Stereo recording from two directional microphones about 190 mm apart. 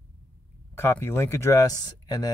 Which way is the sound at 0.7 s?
15° left (ahead or behind).